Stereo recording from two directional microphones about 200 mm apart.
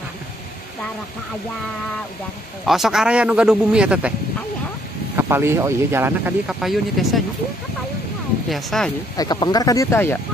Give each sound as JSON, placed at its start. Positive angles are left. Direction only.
{"t": 2.6, "sound": "speech", "side_deg": 0}
{"t": 5.1, "sound": "speech", "side_deg": -10}
{"t": 8.5, "sound": "speech", "side_deg": 0}
{"t": 9.1, "sound": "speech", "side_deg": 20}